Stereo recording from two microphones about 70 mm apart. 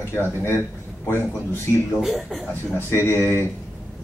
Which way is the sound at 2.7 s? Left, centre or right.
Left.